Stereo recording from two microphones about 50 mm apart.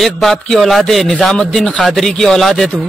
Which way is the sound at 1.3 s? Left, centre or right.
Centre.